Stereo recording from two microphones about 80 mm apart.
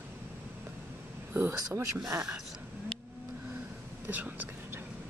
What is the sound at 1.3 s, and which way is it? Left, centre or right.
Speech, right.